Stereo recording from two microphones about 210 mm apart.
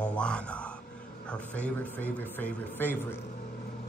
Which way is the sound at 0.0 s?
5° left (ahead or behind).